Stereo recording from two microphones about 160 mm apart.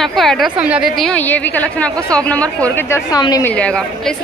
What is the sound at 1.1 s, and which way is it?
Speech, 10° left (ahead or behind).